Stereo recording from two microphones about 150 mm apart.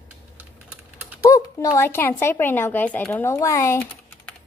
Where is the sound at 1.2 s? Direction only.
25° left (ahead or behind).